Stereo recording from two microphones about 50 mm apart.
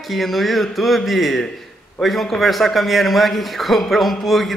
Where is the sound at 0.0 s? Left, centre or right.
Centre.